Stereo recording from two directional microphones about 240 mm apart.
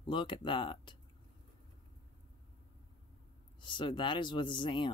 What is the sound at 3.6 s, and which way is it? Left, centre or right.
Speech, centre.